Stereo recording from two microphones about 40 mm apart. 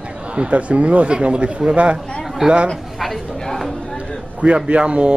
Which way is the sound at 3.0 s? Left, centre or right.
Centre.